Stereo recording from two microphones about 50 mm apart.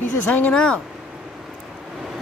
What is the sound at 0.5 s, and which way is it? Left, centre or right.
Speech, centre.